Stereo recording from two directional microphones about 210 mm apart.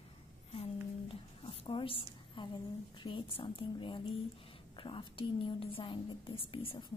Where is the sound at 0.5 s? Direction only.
25° left (ahead or behind).